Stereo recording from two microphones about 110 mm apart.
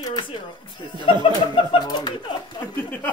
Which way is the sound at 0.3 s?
45° left (ahead or behind).